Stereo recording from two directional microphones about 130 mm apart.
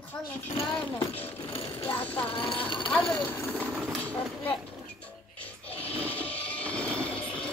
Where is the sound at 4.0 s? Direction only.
10° left (ahead or behind).